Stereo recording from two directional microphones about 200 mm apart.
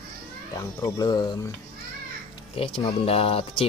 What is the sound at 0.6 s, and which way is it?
Speech, 15° left (ahead or behind).